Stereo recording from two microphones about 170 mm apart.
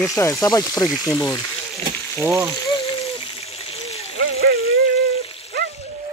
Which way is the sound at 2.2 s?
15° right (ahead or behind).